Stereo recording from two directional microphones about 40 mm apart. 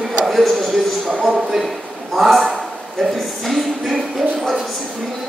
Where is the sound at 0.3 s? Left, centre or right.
Centre.